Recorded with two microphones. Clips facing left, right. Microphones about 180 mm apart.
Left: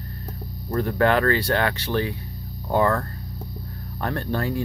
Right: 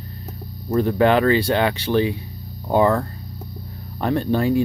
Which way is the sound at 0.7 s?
20° right (ahead or behind).